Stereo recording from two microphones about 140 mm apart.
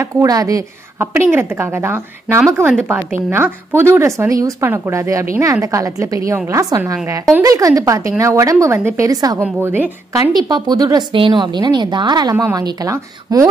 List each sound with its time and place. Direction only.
0.0 s a woman's voice: 25° right (ahead or behind)
9.4 s a woman's voice: 15° right (ahead or behind)
10.3 s a woman's voice: 30° right (ahead or behind)